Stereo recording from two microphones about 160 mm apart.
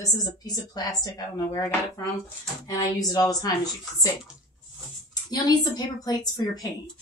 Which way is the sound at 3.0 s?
25° left (ahead or behind).